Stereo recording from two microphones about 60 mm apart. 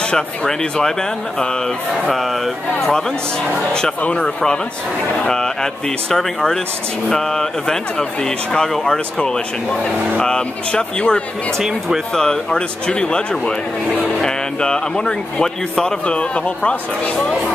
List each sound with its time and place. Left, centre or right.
0.1 s a man's voice: centre
3.7 s a man's voice: centre